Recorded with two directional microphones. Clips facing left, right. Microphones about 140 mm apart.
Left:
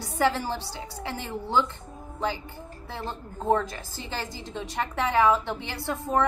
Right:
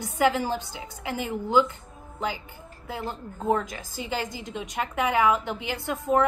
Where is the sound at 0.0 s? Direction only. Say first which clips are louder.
Right 2 dB; 15° right (ahead or behind).